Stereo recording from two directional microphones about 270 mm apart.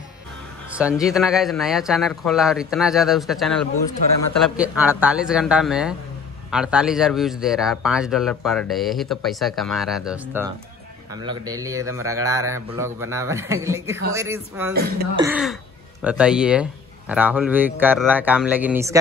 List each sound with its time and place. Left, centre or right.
0.7 s speech: centre
11.1 s a man's voice: centre
14.7 s speech: right
15.1 s a man's voice: centre